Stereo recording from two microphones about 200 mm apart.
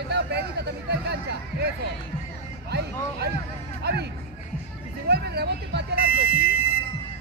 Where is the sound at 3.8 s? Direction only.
55° right (ahead or behind).